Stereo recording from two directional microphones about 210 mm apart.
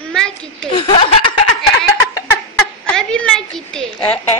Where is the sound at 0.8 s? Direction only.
25° left (ahead or behind).